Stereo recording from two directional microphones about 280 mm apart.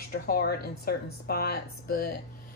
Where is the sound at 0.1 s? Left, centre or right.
Left.